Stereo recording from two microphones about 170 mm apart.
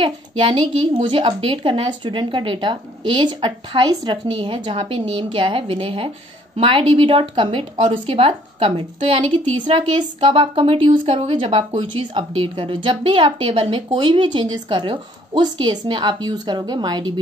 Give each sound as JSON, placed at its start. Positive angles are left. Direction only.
{"t": 0.0, "sound": "a woman's voice", "side_deg": -30}